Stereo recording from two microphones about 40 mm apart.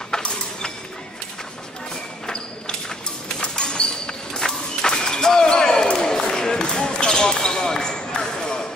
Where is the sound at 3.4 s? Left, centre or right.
Left.